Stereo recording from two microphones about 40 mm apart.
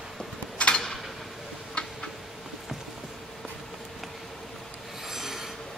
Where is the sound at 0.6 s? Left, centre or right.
Left.